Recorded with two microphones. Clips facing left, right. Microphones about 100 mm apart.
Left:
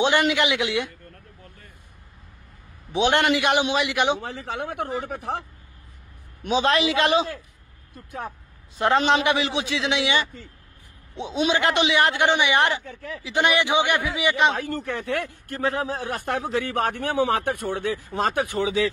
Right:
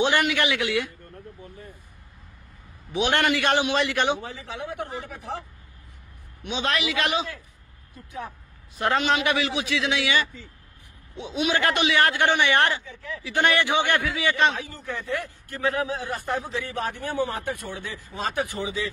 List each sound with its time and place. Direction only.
0.0 s a man's voice: 20° left (ahead or behind)
2.9 s a man's voice: 25° left (ahead or behind)
4.2 s speech: 60° left (ahead or behind)
6.4 s a man's voice: 35° left (ahead or behind)
8.7 s a man's voice: 30° left (ahead or behind)
12.8 s speech: 50° left (ahead or behind)
13.2 s a man's voice: 15° left (ahead or behind)
14.5 s speech: 60° left (ahead or behind)
15.6 s a man's voice: 35° left (ahead or behind)
16.0 s speech: 60° left (ahead or behind); by 18.9 s 90° left